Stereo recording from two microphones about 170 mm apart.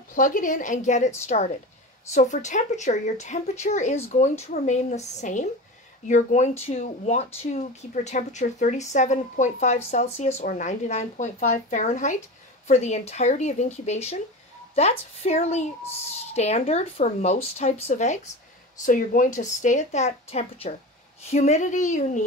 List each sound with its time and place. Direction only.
0.1 s speech: 50° left (ahead or behind)